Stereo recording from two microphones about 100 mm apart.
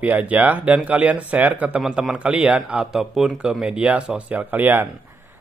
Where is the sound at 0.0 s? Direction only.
15° right (ahead or behind).